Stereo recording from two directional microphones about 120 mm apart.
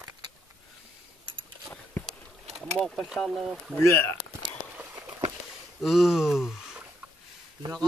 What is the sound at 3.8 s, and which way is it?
Speech, 25° left (ahead or behind).